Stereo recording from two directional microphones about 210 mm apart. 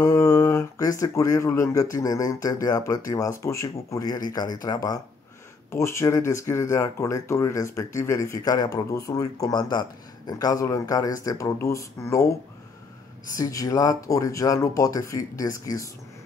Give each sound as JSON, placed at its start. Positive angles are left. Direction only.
{"t": 0.0, "sound": "speech", "side_deg": 15}
{"t": 13.4, "sound": "speech", "side_deg": 15}